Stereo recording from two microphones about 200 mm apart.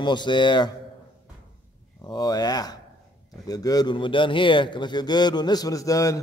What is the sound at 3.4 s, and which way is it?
Speech, 20° left (ahead or behind).